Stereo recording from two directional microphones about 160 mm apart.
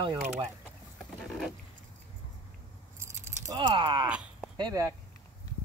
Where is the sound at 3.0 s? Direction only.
25° right (ahead or behind).